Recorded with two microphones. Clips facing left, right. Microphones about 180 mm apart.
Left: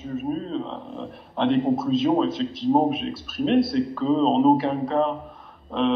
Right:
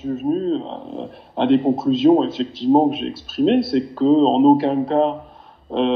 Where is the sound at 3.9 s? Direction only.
30° right (ahead or behind).